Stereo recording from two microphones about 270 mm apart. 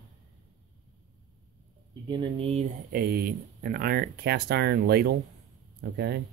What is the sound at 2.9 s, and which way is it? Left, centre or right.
Speech, right.